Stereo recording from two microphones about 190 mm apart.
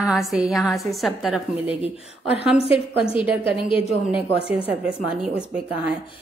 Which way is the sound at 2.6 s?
30° left (ahead or behind).